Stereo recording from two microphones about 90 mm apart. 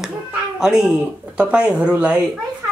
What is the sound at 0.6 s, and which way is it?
Speech, 5° right (ahead or behind).